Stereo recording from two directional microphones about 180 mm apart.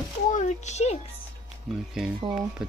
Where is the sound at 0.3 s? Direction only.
40° left (ahead or behind).